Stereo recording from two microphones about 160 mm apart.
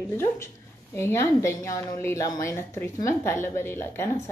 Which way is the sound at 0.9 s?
15° left (ahead or behind).